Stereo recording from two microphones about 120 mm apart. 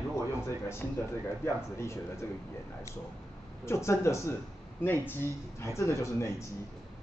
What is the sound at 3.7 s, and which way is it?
Speech, 25° left (ahead or behind).